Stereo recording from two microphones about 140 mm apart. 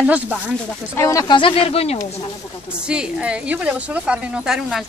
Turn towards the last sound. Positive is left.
turn(degrees=-5)  # may be behind; listen again after turning